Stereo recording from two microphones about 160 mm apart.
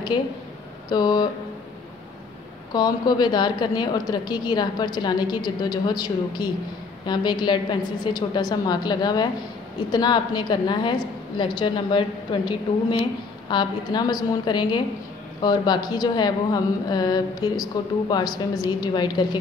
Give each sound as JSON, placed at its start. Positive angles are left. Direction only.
{"t": 0.1, "sound": "a woman's voice", "side_deg": 30}
{"t": 2.7, "sound": "a woman's voice", "side_deg": 25}